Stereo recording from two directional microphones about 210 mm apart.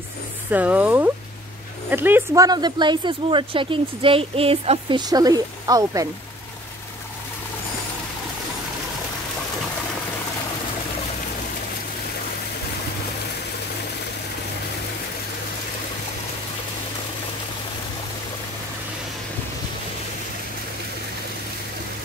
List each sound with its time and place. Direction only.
0.5 s speech: 5° right (ahead or behind)